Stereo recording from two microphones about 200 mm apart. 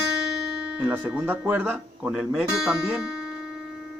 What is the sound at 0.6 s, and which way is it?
Speech, 5° right (ahead or behind).